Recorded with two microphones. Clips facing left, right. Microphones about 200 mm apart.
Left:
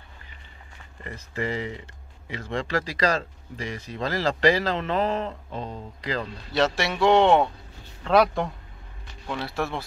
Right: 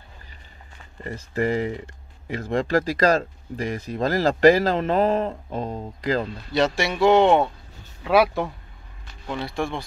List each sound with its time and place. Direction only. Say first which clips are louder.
1.0 s speech: right 6 dB; 45° right (ahead or behind)
6.5 s speech: right 2 dB; centre (ahead or behind)